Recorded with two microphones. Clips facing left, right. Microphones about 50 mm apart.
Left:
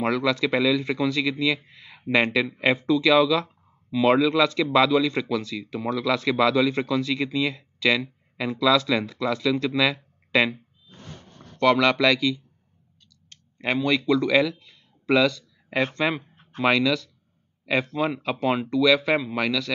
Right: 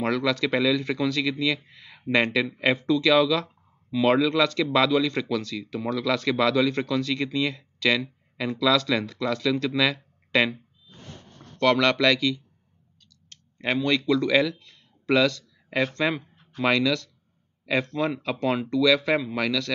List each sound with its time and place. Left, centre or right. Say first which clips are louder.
0.0 s speech: left 1 dB; centre
13.6 s a man's voice: left 1 dB; centre